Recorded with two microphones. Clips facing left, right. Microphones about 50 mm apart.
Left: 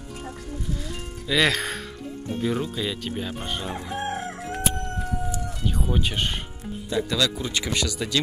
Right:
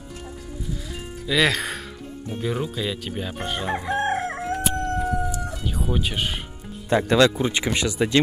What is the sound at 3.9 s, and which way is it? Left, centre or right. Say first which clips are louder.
Crowing: right 6 dB; right.